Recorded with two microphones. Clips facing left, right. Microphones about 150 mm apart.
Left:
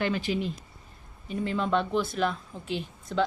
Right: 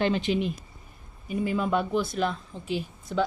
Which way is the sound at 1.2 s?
5° right (ahead or behind).